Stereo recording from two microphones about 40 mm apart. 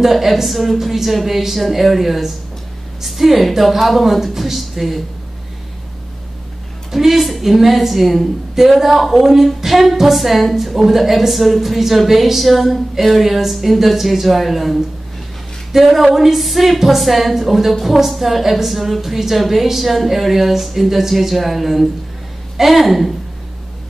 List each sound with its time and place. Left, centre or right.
0.0 s a woman's voice: centre
6.9 s a woman's voice: centre